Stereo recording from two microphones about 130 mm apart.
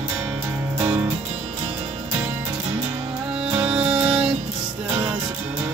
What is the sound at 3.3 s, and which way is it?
Music, 5° right (ahead or behind).